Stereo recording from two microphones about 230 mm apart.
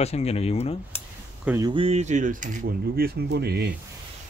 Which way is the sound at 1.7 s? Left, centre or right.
Right.